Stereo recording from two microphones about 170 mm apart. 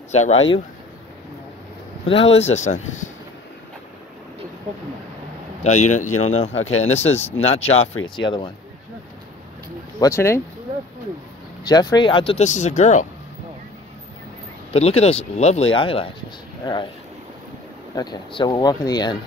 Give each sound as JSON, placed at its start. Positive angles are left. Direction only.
{"t": 0.1, "sound": "speech", "side_deg": 40}
{"t": 2.0, "sound": "speech", "side_deg": 35}
{"t": 5.6, "sound": "speech", "side_deg": 45}
{"t": 9.9, "sound": "speech", "side_deg": 20}
{"t": 11.6, "sound": "speech", "side_deg": 25}
{"t": 12.4, "sound": "speech", "side_deg": 45}
{"t": 14.7, "sound": "speech", "side_deg": 35}
{"t": 17.9, "sound": "speech", "side_deg": 25}